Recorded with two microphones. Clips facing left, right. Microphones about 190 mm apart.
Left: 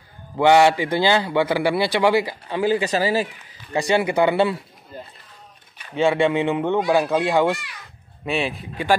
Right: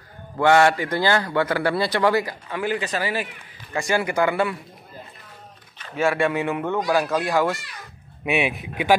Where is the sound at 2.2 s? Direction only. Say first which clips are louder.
Left 5 dB; 30° left (ahead or behind).